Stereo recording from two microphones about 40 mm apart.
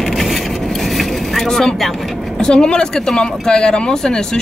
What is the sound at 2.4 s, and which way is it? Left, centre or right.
Speech, left.